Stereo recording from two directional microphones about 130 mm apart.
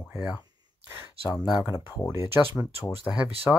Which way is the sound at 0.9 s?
5° right (ahead or behind).